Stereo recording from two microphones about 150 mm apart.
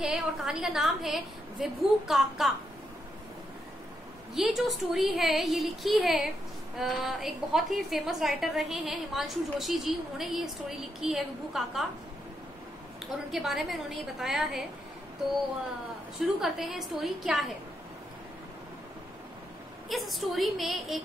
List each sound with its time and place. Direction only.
0.0 s a woman's voice: 5° right (ahead or behind)
4.4 s a woman's voice: centre (ahead or behind)
13.3 s a woman's voice: centre (ahead or behind)
16.3 s a woman's voice: centre (ahead or behind)
19.9 s a woman's voice: centre (ahead or behind)